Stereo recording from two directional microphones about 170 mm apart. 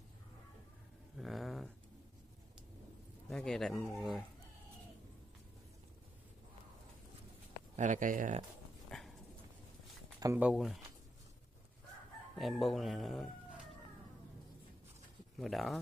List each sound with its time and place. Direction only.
1.1 s a sound: centre (ahead or behind)
3.3 s speech: centre (ahead or behind)
7.7 s speech: 45° right (ahead or behind)
8.9 s dog: 5° left (ahead or behind)
10.2 s speech: 10° right (ahead or behind)
10.5 s speech: centre (ahead or behind)
12.4 s speech: centre (ahead or behind)
15.3 s speech: centre (ahead or behind)